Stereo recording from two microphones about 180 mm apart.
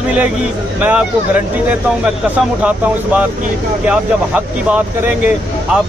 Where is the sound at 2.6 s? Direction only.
10° right (ahead or behind).